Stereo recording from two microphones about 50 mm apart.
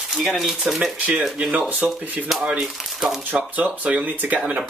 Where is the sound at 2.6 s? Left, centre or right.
Centre.